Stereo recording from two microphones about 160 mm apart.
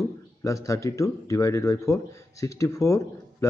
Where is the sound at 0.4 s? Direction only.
20° left (ahead or behind).